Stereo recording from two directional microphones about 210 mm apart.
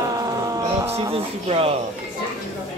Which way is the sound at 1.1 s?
25° right (ahead or behind).